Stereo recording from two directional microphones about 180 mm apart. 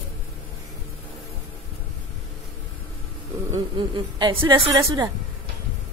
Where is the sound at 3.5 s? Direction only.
25° right (ahead or behind).